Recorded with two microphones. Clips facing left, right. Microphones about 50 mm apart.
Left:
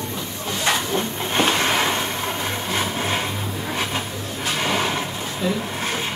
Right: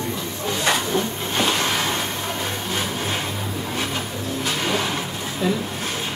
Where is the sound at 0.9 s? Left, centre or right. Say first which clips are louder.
Left 1 dB; left.